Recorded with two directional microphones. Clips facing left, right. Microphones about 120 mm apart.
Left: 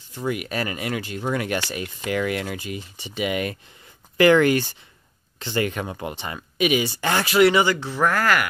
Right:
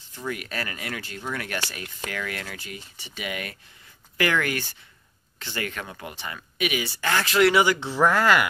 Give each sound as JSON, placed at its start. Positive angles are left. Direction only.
{"t": 0.1, "sound": "speech", "side_deg": 15}
{"t": 7.2, "sound": "speech", "side_deg": 5}
{"t": 8.1, "sound": "speech", "side_deg": -20}